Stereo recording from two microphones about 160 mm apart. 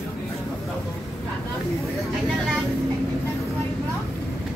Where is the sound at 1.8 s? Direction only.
Centre (ahead or behind).